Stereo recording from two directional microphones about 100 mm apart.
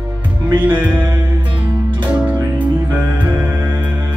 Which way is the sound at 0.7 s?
15° right (ahead or behind).